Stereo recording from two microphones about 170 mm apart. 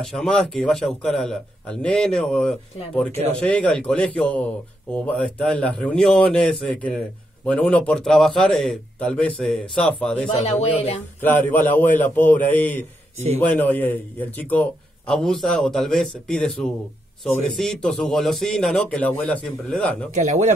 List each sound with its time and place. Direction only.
0.0 s a man's voice: centre (ahead or behind)
10.2 s speech: 35° left (ahead or behind)
11.1 s a man's voice: 10° left (ahead or behind)
20.2 s speech: 45° right (ahead or behind)